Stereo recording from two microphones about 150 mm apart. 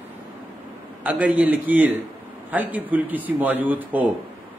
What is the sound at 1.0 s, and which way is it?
A man's voice, 10° right (ahead or behind).